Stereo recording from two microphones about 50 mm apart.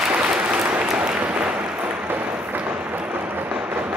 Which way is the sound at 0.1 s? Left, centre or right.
Right.